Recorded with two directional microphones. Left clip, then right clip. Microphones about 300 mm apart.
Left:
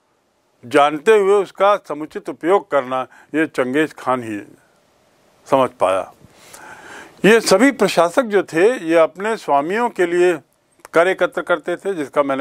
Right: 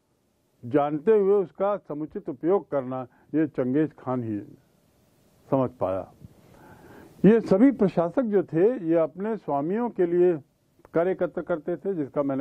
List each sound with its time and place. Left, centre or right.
0.7 s speech: centre
5.5 s speech: centre